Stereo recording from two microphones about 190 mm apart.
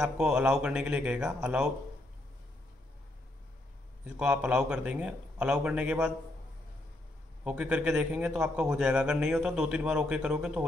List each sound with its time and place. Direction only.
0.0 s a man's voice: 5° right (ahead or behind)
4.2 s a man's voice: 5° right (ahead or behind)
7.4 s a man's voice: 5° right (ahead or behind)